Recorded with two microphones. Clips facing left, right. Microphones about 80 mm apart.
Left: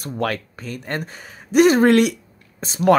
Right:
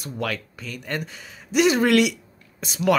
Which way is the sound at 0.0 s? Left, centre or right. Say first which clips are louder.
Left 5 dB; left.